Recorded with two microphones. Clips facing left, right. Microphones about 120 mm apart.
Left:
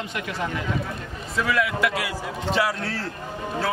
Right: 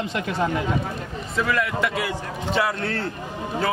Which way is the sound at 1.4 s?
Centre (ahead or behind).